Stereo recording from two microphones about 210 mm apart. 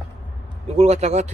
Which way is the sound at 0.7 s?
30° right (ahead or behind).